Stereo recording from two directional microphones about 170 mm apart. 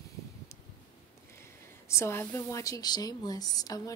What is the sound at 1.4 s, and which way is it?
Speech, 15° left (ahead or behind).